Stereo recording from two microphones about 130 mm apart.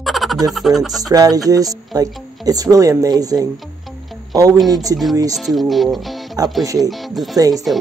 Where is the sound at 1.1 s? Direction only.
30° right (ahead or behind).